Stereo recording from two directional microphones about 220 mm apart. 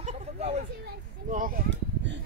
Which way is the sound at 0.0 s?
30° right (ahead or behind).